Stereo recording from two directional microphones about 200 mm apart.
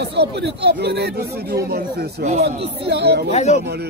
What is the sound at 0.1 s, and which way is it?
Speech, 60° right (ahead or behind).